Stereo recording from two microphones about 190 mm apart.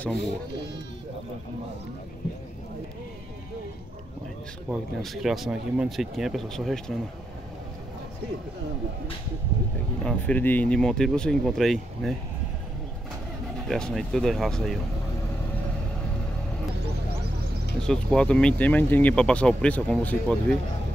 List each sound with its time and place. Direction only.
4.6 s speech: centre (ahead or behind)
10.0 s speech: 10° left (ahead or behind)
13.7 s speech: centre (ahead or behind)
17.7 s speech: 5° left (ahead or behind)